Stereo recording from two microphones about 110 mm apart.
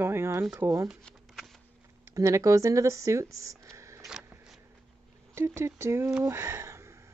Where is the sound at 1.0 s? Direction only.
Centre (ahead or behind).